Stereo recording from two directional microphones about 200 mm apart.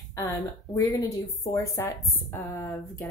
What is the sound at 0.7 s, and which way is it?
Speech, 15° left (ahead or behind).